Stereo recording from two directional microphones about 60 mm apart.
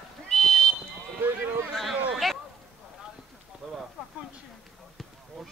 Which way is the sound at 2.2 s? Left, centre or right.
Centre.